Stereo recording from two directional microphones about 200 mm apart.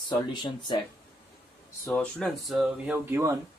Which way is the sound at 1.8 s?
5° left (ahead or behind).